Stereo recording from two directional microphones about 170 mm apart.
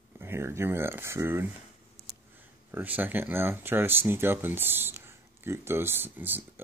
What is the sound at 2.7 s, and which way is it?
Speech, 10° right (ahead or behind).